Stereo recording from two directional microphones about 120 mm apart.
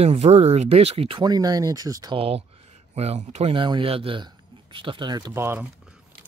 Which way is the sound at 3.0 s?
65° right (ahead or behind).